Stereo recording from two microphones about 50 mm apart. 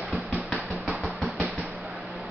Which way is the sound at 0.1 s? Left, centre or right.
Right.